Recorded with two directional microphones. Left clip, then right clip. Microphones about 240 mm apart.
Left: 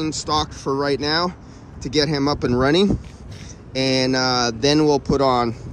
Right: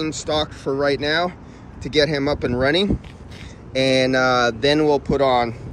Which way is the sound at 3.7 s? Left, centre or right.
Centre.